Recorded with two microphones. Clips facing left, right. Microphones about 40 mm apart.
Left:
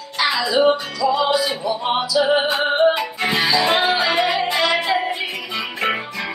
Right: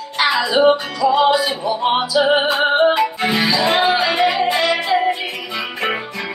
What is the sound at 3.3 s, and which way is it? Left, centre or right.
Music, centre.